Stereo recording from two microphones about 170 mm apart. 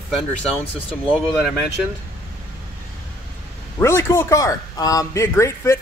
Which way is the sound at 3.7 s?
15° left (ahead or behind).